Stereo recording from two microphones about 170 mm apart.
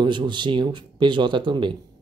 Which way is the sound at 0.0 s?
25° right (ahead or behind).